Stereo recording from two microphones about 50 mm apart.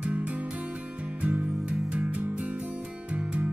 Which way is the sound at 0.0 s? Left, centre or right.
Right.